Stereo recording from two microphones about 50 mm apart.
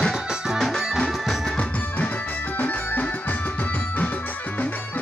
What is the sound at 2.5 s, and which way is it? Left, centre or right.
Music, left.